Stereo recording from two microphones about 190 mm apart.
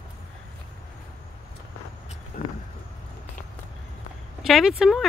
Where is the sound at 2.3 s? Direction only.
45° left (ahead or behind).